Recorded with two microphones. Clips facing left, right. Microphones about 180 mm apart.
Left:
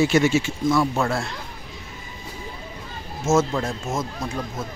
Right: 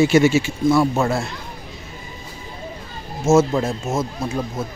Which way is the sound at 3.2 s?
10° right (ahead or behind).